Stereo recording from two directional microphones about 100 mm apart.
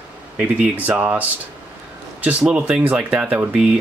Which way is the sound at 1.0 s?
15° right (ahead or behind).